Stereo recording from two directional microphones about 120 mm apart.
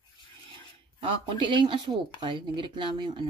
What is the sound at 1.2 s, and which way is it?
Speech, 40° right (ahead or behind).